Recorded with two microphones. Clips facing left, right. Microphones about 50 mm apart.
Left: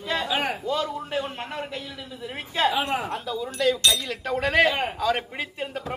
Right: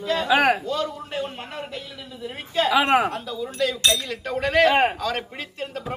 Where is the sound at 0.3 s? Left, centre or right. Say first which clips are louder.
Right 12 dB; right.